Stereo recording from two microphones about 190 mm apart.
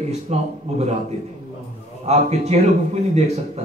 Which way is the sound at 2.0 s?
35° right (ahead or behind).